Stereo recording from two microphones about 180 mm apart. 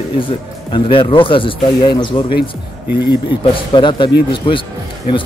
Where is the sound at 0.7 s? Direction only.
25° left (ahead or behind).